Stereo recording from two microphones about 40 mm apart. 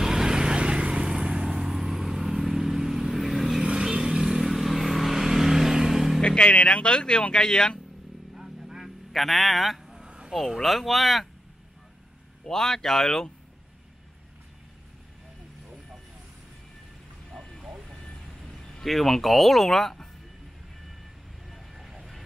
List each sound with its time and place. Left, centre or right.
0.0 s vehicle: centre
3.6 s vehicle: centre
6.2 s speech: left
8.4 s a sound: centre
10.0 s a sound: right
10.6 s speech: centre
12.4 s speech: centre
18.3 s speech: centre
21.5 s vehicle: centre